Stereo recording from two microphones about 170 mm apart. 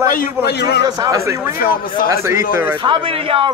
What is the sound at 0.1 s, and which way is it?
Speech, 65° left (ahead or behind).